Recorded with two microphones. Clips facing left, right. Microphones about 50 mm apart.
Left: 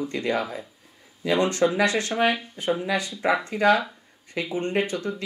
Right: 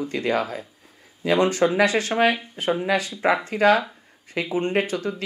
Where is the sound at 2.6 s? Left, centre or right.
Right.